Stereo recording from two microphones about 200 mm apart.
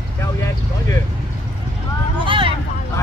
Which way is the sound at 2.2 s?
25° right (ahead or behind).